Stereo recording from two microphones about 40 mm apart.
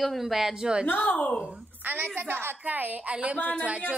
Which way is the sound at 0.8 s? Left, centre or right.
Left.